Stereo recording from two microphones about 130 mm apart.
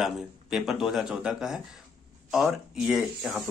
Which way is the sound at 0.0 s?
5° right (ahead or behind).